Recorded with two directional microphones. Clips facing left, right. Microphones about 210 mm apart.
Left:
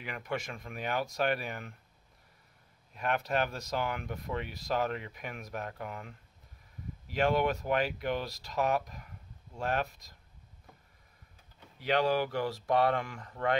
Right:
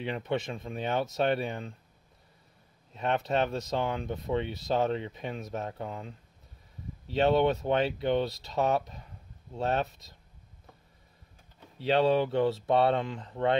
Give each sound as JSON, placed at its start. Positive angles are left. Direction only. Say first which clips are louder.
{"t": 0.0, "sound": "speech", "louder": "right 6 dB", "side_deg": -25}
{"t": 2.9, "sound": "speech", "louder": "right 3 dB", "side_deg": -25}
{"t": 11.8, "sound": "speech", "louder": "right 4 dB", "side_deg": -25}